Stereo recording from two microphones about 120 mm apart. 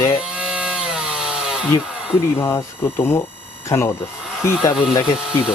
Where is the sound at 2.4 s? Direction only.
20° left (ahead or behind).